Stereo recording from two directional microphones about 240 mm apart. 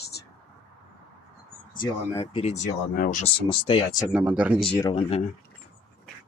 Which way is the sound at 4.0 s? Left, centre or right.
Centre.